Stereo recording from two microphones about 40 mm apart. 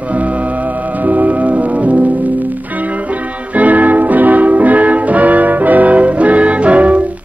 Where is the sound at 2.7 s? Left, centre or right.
Right.